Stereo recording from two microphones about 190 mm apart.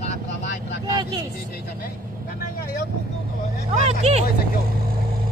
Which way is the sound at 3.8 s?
35° right (ahead or behind).